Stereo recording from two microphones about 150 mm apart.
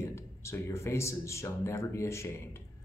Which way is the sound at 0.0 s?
20° left (ahead or behind).